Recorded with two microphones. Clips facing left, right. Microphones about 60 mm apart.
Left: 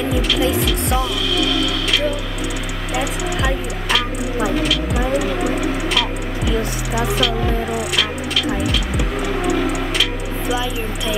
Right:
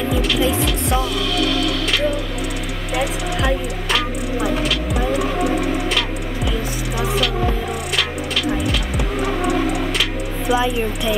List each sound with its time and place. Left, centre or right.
0.1 s music: centre
2.9 s music: centre
7.0 s music: centre
10.5 s speech: centre